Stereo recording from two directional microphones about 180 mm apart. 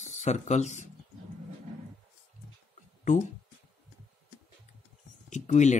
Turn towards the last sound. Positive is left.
turn(degrees=40)  # may be behind; listen again after turning